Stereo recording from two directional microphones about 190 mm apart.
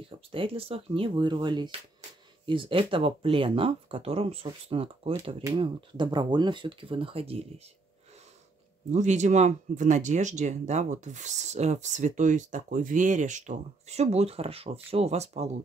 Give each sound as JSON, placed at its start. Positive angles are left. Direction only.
{"t": 0.0, "sound": "speech", "side_deg": -30}
{"t": 8.9, "sound": "speech", "side_deg": -40}